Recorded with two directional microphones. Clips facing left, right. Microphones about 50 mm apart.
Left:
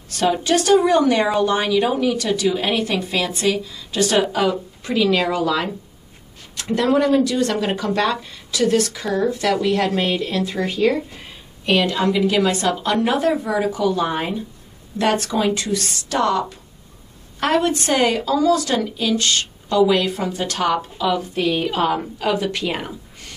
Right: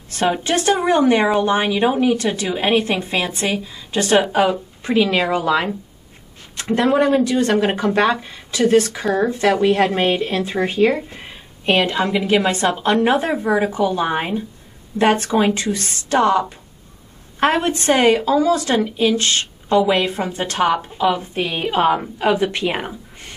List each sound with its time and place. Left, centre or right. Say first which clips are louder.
0.1 s speech: even; right